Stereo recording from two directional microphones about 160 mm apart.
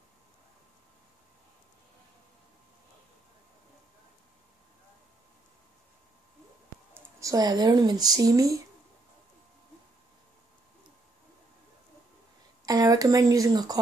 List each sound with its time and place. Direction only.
7.2 s speech: 20° right (ahead or behind)
12.6 s speech: 20° right (ahead or behind)